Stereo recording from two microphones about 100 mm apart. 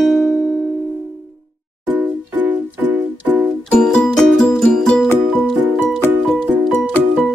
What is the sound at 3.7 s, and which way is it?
Music, 5° left (ahead or behind).